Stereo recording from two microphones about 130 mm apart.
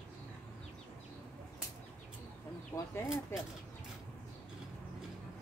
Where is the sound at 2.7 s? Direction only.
20° left (ahead or behind).